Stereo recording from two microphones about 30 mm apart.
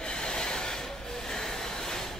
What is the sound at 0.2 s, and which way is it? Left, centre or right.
Train, left.